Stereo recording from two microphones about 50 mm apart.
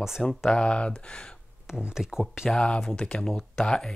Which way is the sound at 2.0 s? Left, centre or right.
Centre.